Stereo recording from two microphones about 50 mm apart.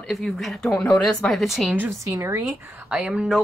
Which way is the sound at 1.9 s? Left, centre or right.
Right.